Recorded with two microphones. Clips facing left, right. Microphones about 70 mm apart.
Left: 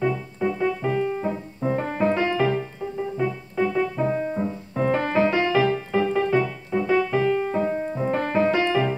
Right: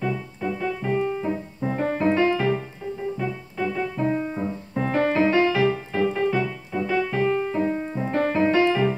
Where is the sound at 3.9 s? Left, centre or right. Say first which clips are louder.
Left 1 dB; centre.